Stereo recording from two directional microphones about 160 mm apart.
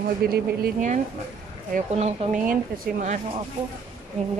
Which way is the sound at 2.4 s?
55° right (ahead or behind).